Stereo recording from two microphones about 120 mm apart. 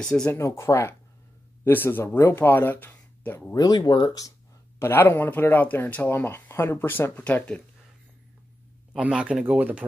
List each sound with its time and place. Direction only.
0.0 s speech: 5° left (ahead or behind)
0.3 s speech: 25° left (ahead or behind)
3.5 s speech: 35° left (ahead or behind)
4.7 s speech: 20° left (ahead or behind)
8.9 s speech: 5° right (ahead or behind)